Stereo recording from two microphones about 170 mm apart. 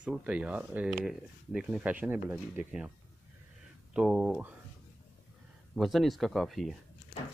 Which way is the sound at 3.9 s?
5° right (ahead or behind).